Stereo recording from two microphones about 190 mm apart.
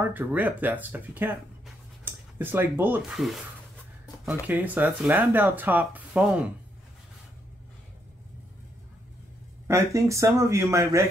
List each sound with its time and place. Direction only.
0.0 s speech: 10° right (ahead or behind)
9.7 s speech: 15° right (ahead or behind)